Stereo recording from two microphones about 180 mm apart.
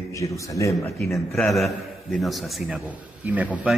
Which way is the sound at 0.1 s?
15° left (ahead or behind).